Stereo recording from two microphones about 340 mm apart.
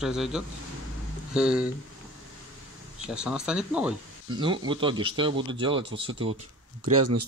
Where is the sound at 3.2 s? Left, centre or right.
Centre.